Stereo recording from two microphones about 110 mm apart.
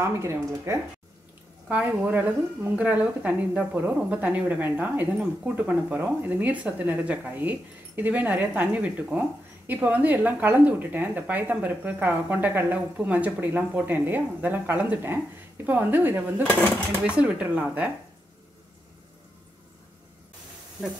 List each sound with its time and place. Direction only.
0.0 s speech: 25° right (ahead or behind)
1.7 s a woman's voice: 15° right (ahead or behind)